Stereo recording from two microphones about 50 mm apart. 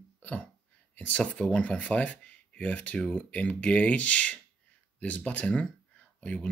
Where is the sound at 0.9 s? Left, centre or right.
Left.